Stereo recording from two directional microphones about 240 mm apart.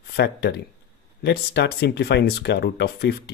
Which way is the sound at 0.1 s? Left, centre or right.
Left.